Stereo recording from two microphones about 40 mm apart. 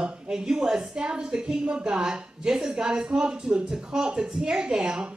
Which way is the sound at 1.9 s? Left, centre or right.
Centre.